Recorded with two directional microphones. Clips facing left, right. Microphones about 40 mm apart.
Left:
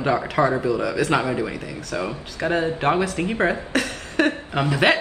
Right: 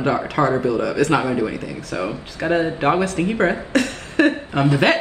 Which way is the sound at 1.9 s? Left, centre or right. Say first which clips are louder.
Right 2 dB; right.